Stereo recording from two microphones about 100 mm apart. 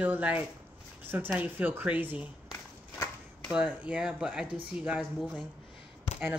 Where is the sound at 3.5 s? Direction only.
10° right (ahead or behind).